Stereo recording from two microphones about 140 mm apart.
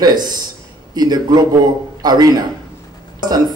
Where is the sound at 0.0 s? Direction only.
30° right (ahead or behind).